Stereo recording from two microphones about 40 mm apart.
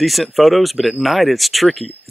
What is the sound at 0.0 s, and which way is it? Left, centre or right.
Speech, centre.